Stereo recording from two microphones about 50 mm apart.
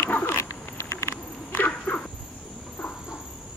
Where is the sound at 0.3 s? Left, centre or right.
Left.